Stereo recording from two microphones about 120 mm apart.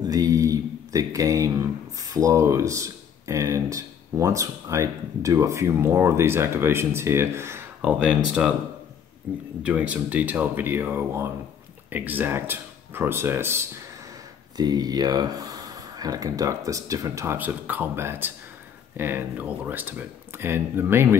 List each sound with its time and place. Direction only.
0.1 s speech: 30° right (ahead or behind)
7.8 s speech: 10° right (ahead or behind)
9.6 s speech: 10° right (ahead or behind)
14.6 s speech: 35° right (ahead or behind)
17.4 s speech: 15° right (ahead or behind)